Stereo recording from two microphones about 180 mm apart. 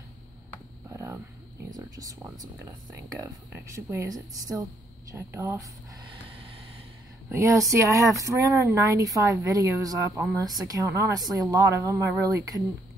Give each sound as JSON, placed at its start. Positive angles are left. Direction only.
{"t": 0.8, "sound": "a sound", "side_deg": -15}
{"t": 1.7, "sound": "speech", "side_deg": -15}
{"t": 6.0, "sound": "vehicle", "side_deg": -30}
{"t": 7.2, "sound": "speech", "side_deg": -15}